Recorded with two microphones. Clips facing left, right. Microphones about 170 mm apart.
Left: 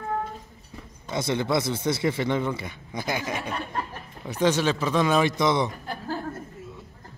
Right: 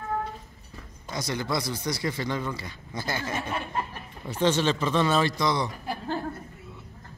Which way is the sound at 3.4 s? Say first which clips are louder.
Even; 5° right (ahead or behind).